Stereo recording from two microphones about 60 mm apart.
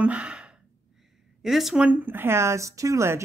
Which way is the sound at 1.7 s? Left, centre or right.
Centre.